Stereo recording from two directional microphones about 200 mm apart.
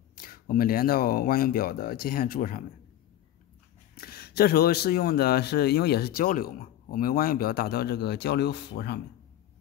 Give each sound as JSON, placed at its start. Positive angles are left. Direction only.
{"t": 0.1, "sound": "speech", "side_deg": 45}
{"t": 3.9, "sound": "speech", "side_deg": 50}